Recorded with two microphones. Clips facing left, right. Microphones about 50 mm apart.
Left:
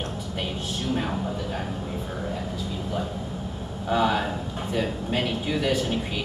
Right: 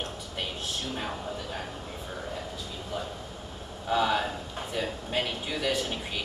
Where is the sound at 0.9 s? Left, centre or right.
Centre.